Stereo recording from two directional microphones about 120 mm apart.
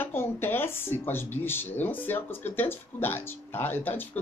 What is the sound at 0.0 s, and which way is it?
Speech, 20° left (ahead or behind).